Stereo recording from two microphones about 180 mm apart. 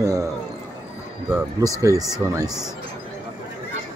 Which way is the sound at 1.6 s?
20° right (ahead or behind).